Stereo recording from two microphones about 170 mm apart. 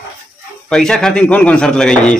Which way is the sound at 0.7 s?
5° left (ahead or behind).